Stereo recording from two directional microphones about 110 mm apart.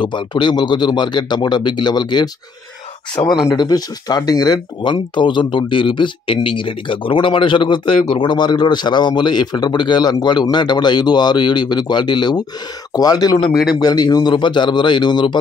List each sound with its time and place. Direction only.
0.0 s speech: 45° left (ahead or behind)